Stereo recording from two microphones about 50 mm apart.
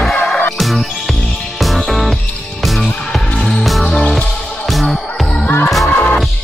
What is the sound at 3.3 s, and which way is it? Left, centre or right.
Music, centre.